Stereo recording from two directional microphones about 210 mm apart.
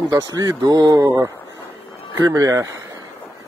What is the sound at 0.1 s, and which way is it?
Speech, 15° right (ahead or behind).